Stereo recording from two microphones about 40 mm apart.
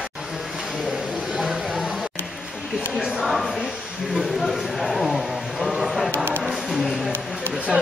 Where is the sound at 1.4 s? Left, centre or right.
Centre.